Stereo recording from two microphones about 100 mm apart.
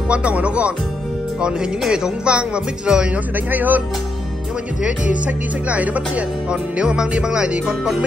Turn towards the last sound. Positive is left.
turn(degrees=-10)  # may be behind; listen again after turning